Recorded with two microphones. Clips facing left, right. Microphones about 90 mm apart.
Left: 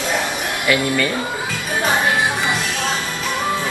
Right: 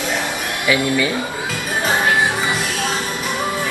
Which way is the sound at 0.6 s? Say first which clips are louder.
Right 1 dB; 10° right (ahead or behind).